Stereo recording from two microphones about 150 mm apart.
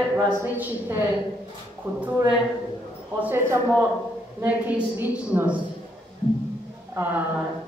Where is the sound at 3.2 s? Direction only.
15° right (ahead or behind).